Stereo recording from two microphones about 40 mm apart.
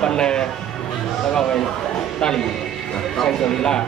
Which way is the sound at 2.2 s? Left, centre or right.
Centre.